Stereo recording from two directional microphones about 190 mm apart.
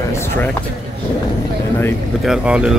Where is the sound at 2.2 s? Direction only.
5° right (ahead or behind).